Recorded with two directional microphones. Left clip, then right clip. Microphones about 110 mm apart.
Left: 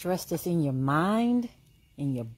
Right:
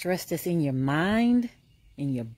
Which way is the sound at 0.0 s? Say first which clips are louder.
Right 1 dB; 40° right (ahead or behind).